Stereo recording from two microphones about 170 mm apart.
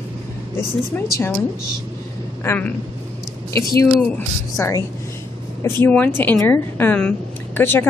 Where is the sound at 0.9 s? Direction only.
10° left (ahead or behind).